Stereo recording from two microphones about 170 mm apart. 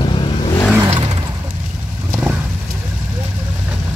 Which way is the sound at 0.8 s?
30° right (ahead or behind).